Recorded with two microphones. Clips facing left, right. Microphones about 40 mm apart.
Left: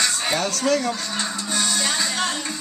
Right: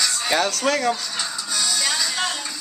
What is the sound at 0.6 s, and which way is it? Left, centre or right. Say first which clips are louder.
Speech: left 1 dB; right.